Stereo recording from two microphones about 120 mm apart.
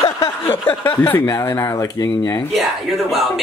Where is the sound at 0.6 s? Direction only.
15° left (ahead or behind).